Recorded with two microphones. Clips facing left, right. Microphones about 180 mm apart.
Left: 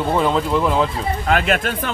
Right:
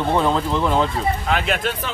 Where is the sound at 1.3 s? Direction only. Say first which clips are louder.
Left 3 dB; 50° left (ahead or behind).